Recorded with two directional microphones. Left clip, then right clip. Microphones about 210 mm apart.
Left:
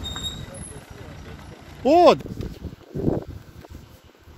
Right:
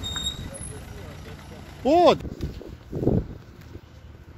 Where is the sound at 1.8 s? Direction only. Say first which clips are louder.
Left 3 dB; 10° left (ahead or behind).